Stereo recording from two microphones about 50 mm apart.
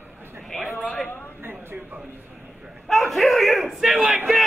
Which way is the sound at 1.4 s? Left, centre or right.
Right.